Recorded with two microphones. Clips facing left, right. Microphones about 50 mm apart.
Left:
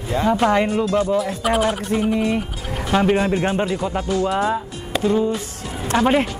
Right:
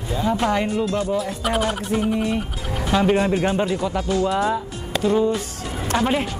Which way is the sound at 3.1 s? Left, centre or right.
Centre.